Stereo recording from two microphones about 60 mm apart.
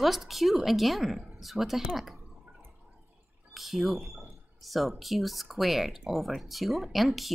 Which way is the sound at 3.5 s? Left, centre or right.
Centre.